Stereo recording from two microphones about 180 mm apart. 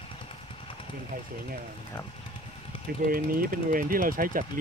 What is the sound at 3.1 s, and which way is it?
Speech, 50° right (ahead or behind).